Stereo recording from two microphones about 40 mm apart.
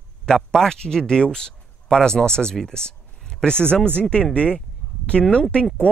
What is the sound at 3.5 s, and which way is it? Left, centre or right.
Speech, left.